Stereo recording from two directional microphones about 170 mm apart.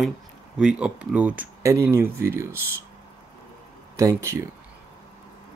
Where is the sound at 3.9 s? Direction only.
15° right (ahead or behind).